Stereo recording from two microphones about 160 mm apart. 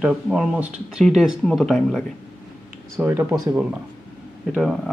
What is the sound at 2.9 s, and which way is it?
Speech, 15° right (ahead or behind).